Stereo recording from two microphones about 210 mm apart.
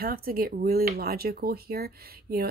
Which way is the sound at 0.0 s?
45° right (ahead or behind).